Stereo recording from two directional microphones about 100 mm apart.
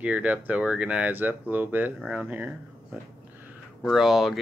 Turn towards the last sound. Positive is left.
turn(degrees=-5)  # may be behind; listen again after turning